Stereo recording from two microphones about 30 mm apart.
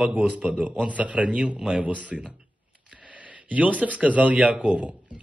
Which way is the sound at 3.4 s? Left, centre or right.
Right.